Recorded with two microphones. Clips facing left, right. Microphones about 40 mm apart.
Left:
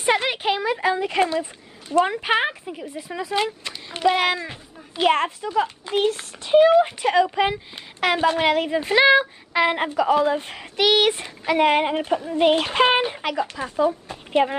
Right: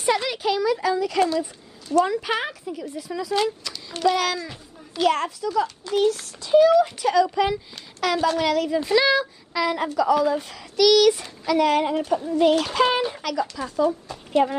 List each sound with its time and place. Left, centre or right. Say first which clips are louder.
0.0 s a child's voice: left 2 dB; left